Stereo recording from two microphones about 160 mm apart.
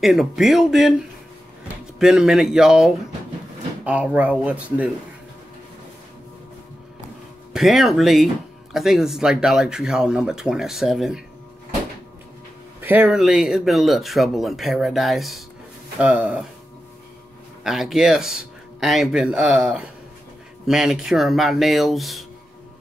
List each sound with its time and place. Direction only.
0.0 s speech: centre (ahead or behind)
2.0 s speech: 5° right (ahead or behind)
7.5 s speech: centre (ahead or behind)
12.8 s speech: 10° right (ahead or behind)
13.2 s speech: centre (ahead or behind)
17.6 s speech: centre (ahead or behind)